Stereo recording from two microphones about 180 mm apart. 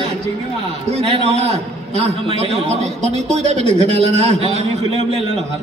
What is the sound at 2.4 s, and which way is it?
A man's voice, 35° right (ahead or behind).